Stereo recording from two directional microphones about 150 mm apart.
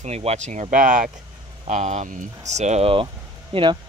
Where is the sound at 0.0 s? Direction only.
45° right (ahead or behind).